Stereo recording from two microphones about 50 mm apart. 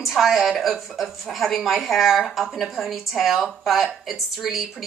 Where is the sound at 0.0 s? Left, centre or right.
Centre.